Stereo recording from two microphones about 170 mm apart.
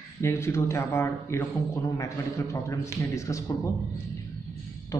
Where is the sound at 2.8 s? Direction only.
20° left (ahead or behind).